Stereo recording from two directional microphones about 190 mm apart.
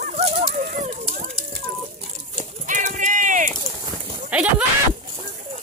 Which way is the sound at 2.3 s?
40° right (ahead or behind).